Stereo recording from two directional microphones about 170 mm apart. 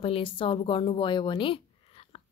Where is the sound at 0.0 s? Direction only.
30° left (ahead or behind).